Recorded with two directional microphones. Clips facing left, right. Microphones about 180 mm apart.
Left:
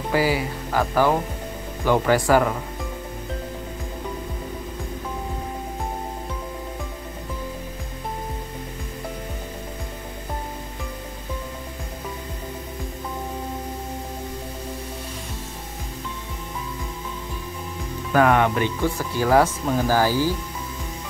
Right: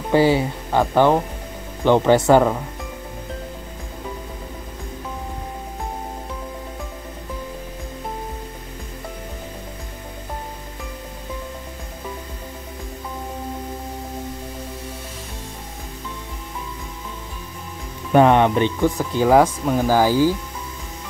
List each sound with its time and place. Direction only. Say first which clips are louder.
0.1 s speech: right 6 dB; 25° right (ahead or behind)
18.1 s speech: right 4 dB; 25° right (ahead or behind)